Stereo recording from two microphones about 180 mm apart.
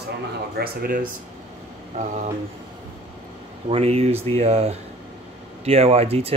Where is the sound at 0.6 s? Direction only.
50° right (ahead or behind).